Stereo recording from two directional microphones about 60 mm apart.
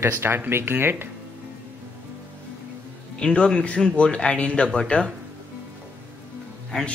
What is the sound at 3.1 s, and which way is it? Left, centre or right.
A man's voice, centre.